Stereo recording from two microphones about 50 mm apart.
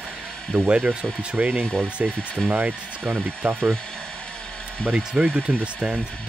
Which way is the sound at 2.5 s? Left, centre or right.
Right.